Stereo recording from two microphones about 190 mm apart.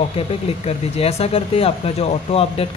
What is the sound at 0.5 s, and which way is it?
Speech, 30° left (ahead or behind).